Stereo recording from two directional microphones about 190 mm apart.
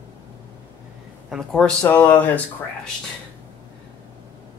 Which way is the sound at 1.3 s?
5° left (ahead or behind).